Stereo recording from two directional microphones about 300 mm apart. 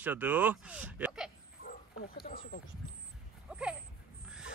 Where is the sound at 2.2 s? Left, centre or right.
Left.